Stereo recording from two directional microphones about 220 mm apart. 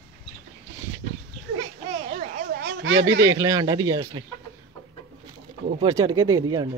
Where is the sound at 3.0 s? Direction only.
50° right (ahead or behind).